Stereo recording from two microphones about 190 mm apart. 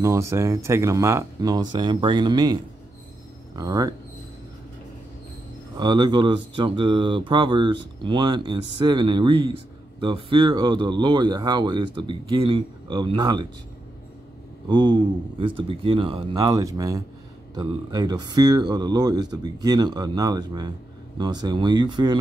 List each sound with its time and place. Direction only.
0.0 s speech: 15° right (ahead or behind)
5.8 s speech: 25° right (ahead or behind)
14.7 s speech: 25° right (ahead or behind)